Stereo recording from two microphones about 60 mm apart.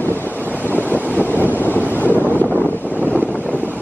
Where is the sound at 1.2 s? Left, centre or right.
Left.